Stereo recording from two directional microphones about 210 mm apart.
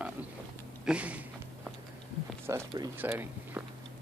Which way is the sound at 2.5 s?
15° right (ahead or behind).